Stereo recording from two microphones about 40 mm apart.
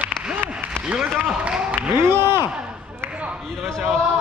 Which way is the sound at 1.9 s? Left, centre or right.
Right.